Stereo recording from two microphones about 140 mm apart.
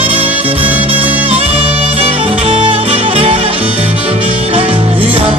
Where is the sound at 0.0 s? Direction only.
10° right (ahead or behind).